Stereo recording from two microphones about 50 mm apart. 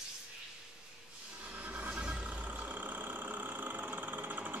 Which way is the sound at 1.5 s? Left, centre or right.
Right.